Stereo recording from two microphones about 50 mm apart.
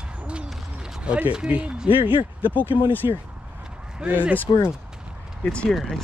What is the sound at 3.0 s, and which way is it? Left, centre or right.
Speech, right.